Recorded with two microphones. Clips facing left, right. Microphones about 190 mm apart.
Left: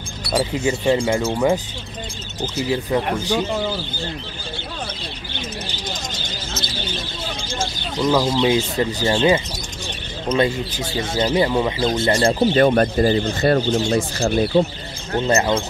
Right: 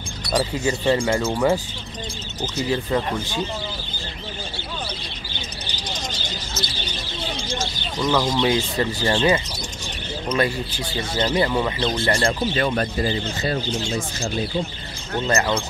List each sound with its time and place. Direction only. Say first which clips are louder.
0.2 s a sound: left 1 dB; 10° left (ahead or behind)
0.7 s speech: left 2 dB; 15° left (ahead or behind)
8.0 s speech: left 3 dB; 10° left (ahead or behind)
10.2 s speech: left 4 dB; 25° left (ahead or behind)
12.4 s speech: left 7 dB; 45° left (ahead or behind)
15.1 s speech: left 3 dB; 20° left (ahead or behind)